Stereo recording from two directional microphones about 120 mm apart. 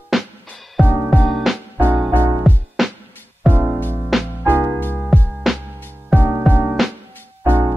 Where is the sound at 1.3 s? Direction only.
Centre (ahead or behind).